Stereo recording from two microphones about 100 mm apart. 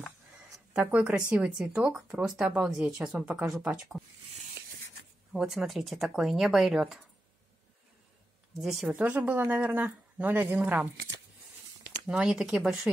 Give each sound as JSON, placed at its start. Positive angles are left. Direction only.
{"t": 0.7, "sound": "speech", "side_deg": -15}
{"t": 5.3, "sound": "speech", "side_deg": -5}
{"t": 8.5, "sound": "speech", "side_deg": 0}
{"t": 8.9, "sound": "speech", "side_deg": -15}
{"t": 12.1, "sound": "speech", "side_deg": -10}